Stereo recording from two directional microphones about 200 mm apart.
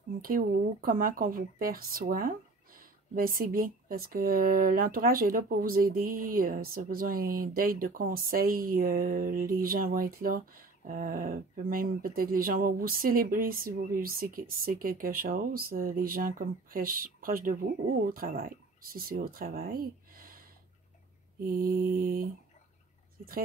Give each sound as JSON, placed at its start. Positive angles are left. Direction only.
{"t": 0.2, "sound": "speech", "side_deg": -45}